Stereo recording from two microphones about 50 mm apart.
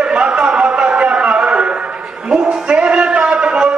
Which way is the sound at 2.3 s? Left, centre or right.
Centre.